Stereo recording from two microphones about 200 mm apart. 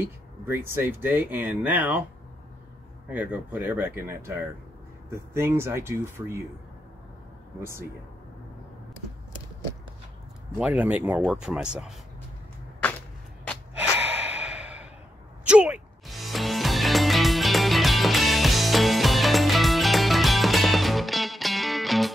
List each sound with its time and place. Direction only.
0.0 s speech: 10° right (ahead or behind)
3.1 s speech: 10° right (ahead or behind)
10.6 s speech: 5° right (ahead or behind)
13.7 s gasp: 10° right (ahead or behind)
15.4 s music: 5° right (ahead or behind)